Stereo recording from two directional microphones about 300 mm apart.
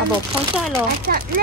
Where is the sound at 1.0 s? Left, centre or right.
Right.